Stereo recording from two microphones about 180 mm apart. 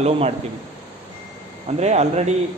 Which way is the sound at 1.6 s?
40° right (ahead or behind).